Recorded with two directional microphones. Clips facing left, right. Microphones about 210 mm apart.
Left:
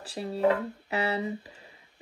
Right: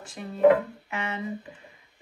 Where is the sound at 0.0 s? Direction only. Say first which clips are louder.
Right 6 dB; 35° left (ahead or behind).